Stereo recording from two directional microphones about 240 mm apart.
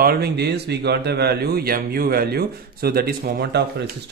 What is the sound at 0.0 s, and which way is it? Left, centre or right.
Speech, right.